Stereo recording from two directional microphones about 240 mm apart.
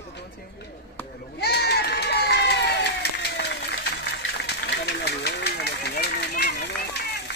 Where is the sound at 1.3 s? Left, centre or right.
Left.